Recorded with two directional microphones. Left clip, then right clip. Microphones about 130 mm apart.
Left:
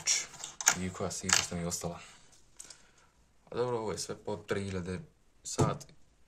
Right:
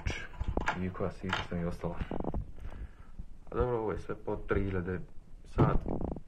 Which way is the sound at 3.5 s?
30° left (ahead or behind).